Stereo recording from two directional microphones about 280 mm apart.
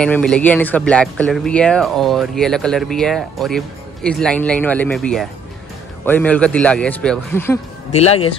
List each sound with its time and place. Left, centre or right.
0.0 s speech: centre
7.9 s speech: left